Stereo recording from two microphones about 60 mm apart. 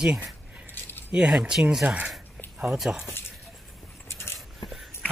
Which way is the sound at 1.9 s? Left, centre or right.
Right.